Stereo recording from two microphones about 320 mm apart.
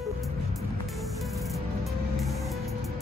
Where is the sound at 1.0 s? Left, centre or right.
Centre.